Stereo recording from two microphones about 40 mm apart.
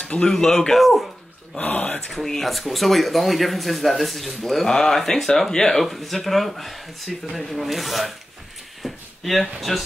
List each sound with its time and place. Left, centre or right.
0.0 s a sound: left
0.3 s speech: centre
0.8 s speech: centre
1.6 s speech: left
2.2 s speech: centre
8.8 s a sound: centre